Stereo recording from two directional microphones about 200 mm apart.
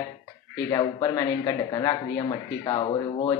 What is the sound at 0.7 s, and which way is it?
Speech, 20° left (ahead or behind).